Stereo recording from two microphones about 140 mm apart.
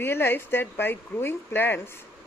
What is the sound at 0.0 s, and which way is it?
Speech, 15° left (ahead or behind).